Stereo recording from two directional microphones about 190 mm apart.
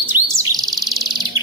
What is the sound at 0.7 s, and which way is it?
Bird, centre (ahead or behind).